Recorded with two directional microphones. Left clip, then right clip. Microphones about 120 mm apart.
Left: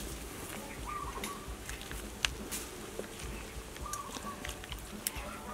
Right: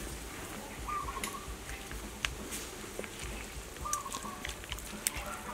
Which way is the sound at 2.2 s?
20° left (ahead or behind).